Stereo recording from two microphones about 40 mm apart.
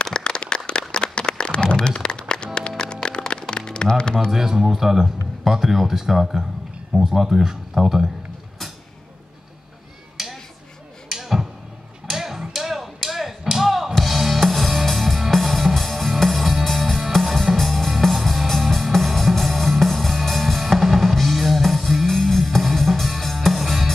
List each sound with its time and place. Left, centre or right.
0.0 s a sound: left
2.8 s music: left
4.3 s speech: centre
10.2 s a sound: centre
12.1 s hammer: centre
13.5 s music: centre